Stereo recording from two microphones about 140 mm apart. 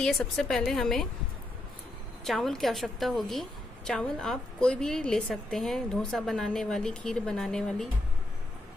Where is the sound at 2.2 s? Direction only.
Centre (ahead or behind).